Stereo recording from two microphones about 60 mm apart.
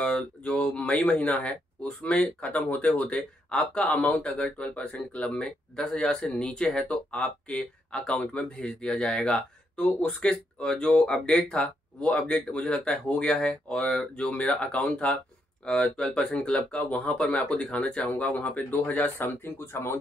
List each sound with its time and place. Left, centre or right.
0.0 s speech: centre
16.7 s speech: left